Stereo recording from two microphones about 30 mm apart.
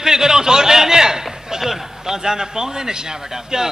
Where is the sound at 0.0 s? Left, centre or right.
Centre.